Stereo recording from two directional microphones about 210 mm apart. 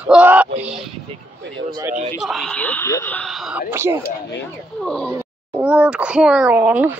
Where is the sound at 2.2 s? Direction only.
Centre (ahead or behind).